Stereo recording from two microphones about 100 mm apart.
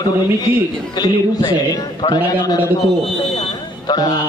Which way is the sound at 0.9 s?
45° left (ahead or behind).